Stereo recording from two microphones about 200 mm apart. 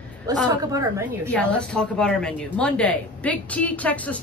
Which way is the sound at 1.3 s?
5° left (ahead or behind).